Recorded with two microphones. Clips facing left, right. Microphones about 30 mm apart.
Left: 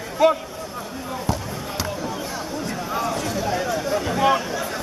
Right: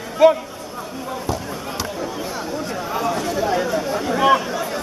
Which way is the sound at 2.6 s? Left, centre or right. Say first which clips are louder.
Right 2 dB; centre.